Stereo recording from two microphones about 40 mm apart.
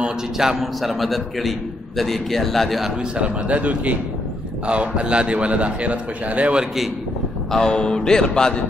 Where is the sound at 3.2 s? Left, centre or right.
Right.